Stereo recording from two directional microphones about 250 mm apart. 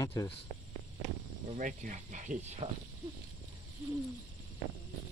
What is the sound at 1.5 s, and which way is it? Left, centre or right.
Speech, right.